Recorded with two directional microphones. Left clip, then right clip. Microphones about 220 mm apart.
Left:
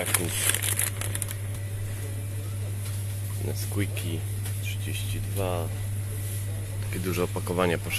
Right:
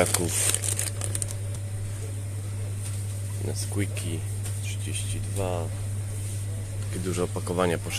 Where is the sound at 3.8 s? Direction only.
Centre (ahead or behind).